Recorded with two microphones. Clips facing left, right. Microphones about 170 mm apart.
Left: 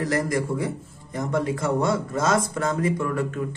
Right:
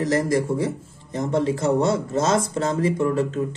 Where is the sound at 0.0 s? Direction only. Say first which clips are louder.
Right 3 dB; 25° right (ahead or behind).